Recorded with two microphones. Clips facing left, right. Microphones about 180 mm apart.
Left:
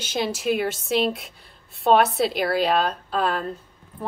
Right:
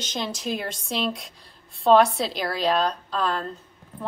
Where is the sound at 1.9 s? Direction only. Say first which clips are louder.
Even; 60° left (ahead or behind).